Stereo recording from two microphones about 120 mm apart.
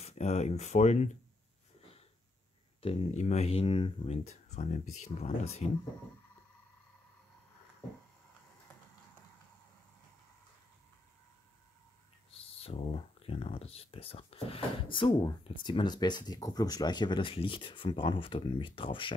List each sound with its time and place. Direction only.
0.0 s speech: 65° left (ahead or behind); by 1.1 s 85° left
2.8 s speech: 55° left (ahead or behind)
3.2 s speech: 70° left (ahead or behind)
12.4 s speech: 55° left (ahead or behind)